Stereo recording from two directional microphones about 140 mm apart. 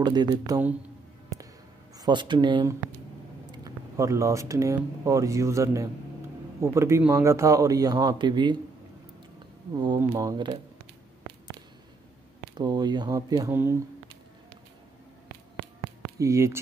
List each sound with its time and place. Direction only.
0.0 s a man's voice: 30° right (ahead or behind)
2.0 s a man's voice: 30° right (ahead or behind)
9.8 s a man's voice: 30° right (ahead or behind)
12.5 s a man's voice: 30° right (ahead or behind)
13.5 s speech: 15° right (ahead or behind)
16.2 s a man's voice: 20° right (ahead or behind)